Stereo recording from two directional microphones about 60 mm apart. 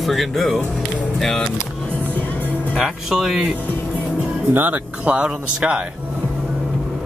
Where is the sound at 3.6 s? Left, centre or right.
Left.